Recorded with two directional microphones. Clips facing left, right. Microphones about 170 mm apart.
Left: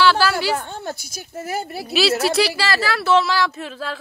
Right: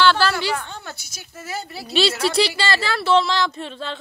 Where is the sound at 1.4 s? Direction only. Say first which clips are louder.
Left 4 dB; 55° left (ahead or behind).